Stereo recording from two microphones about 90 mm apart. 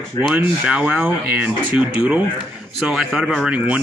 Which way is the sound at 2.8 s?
5° right (ahead or behind).